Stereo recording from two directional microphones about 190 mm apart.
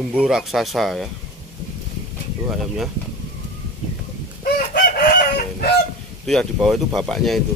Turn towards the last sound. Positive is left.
turn(degrees=0)  # may be behind; listen again after turning